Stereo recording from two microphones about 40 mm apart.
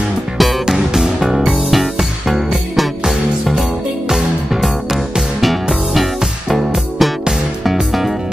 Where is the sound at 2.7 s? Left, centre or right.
Centre.